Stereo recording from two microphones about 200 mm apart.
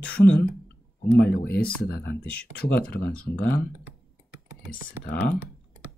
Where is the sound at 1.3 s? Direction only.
50° left (ahead or behind).